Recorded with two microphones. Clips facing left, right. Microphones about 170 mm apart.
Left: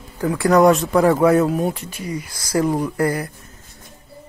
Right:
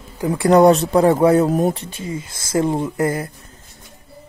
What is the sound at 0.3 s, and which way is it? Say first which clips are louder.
Speech: right 2 dB; 25° right (ahead or behind).